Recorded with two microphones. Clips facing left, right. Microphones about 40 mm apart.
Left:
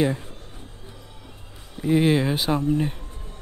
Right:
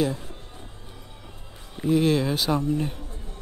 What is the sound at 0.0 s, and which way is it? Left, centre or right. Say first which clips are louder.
Speech: left 3 dB; left.